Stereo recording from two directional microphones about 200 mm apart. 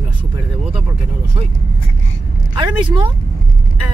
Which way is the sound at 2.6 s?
25° right (ahead or behind).